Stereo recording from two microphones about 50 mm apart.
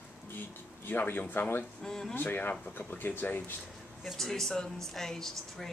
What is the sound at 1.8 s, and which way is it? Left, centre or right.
Speech, centre.